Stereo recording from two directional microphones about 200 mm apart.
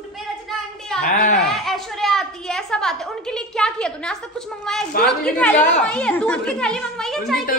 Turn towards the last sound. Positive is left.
turn(degrees=0)  # may be behind; listen again after turning